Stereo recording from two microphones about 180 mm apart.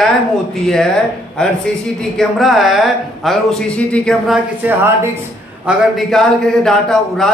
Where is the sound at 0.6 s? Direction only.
5° left (ahead or behind).